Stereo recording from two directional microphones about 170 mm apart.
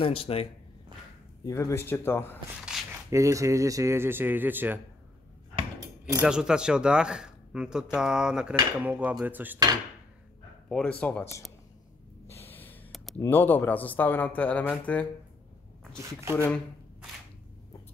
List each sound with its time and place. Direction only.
0.0 s speech: 35° left (ahead or behind)
1.4 s speech: 15° left (ahead or behind)
2.6 s a sound: 5° right (ahead or behind)
3.1 s speech: 20° right (ahead or behind)
6.2 s speech: 5° right (ahead or behind)
10.7 s speech: 5° left (ahead or behind)
12.4 s snort: 10° left (ahead or behind)
13.2 s speech: 10° left (ahead or behind)
16.0 s speech: 15° right (ahead or behind)